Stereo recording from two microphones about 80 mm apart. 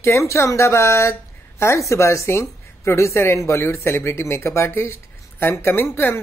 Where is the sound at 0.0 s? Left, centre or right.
Left.